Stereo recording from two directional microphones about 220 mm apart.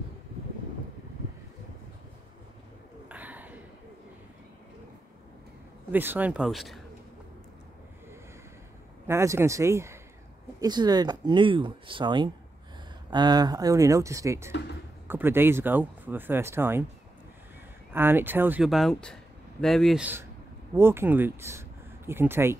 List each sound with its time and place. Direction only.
3.1 s a sound: 5° right (ahead or behind)
5.9 s speech: 10° right (ahead or behind)
9.0 s speech: 10° right (ahead or behind)
17.9 s speech: 10° right (ahead or behind)